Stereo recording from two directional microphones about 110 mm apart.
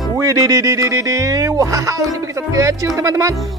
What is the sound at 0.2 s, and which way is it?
Speech, 30° right (ahead or behind).